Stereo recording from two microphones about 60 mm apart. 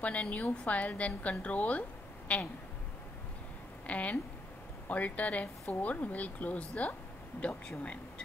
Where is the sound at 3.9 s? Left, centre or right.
Left.